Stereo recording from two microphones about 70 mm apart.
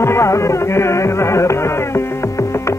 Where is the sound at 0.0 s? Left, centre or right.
Left.